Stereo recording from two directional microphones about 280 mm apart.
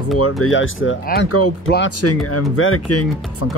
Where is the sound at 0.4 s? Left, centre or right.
Left.